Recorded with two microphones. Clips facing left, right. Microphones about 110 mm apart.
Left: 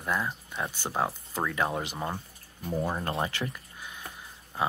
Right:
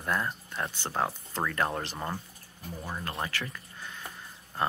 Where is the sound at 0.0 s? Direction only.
Centre (ahead or behind).